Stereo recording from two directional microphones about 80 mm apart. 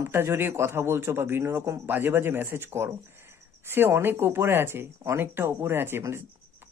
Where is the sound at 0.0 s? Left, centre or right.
Right.